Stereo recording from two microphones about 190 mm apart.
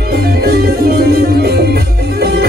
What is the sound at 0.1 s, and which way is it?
Music, 55° right (ahead or behind).